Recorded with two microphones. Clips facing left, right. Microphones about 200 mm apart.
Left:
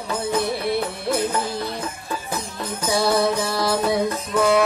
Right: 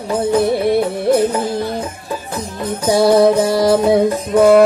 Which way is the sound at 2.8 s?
40° right (ahead or behind).